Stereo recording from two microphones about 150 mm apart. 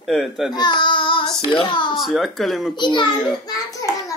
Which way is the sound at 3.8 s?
25° left (ahead or behind).